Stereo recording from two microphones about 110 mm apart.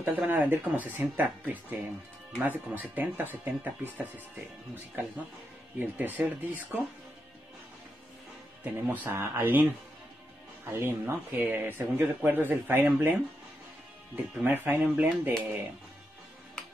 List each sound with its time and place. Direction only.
0.0 s speech: 15° right (ahead or behind)
5.8 s speech: 15° right (ahead or behind)
8.8 s speech: 15° right (ahead or behind)